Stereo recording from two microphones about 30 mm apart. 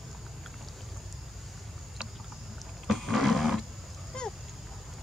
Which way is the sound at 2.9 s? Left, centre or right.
Centre.